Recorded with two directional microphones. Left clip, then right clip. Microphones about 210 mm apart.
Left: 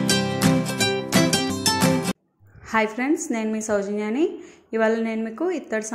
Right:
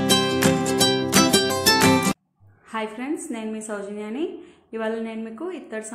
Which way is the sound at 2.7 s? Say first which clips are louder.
Left 7 dB; 25° left (ahead or behind).